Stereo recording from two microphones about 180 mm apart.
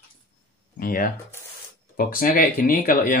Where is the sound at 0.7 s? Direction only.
55° left (ahead or behind).